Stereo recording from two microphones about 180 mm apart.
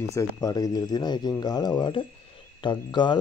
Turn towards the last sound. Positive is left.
turn(degrees=25)  # may be behind; listen again after turning